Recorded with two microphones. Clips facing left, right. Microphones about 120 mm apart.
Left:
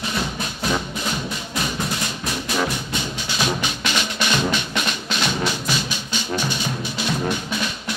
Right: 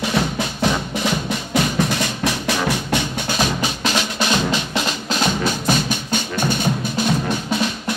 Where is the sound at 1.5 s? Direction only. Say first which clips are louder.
Right 8 dB; 90° right.